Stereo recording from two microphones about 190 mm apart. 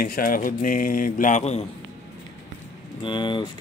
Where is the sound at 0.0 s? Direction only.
50° left (ahead or behind).